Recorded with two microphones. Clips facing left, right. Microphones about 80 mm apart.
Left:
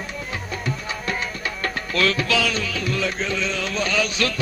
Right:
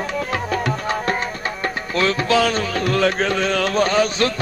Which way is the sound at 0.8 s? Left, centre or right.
Right.